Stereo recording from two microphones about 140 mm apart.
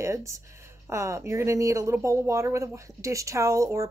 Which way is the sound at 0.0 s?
20° right (ahead or behind).